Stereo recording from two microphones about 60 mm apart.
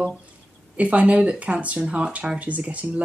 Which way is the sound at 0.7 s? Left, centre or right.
Right.